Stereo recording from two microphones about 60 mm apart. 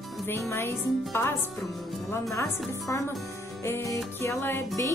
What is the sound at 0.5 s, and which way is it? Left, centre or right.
Speech, left.